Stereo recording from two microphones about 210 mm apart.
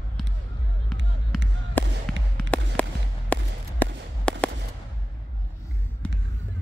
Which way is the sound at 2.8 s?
5° left (ahead or behind).